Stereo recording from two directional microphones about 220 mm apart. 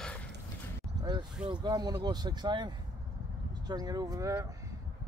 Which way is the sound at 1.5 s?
20° right (ahead or behind).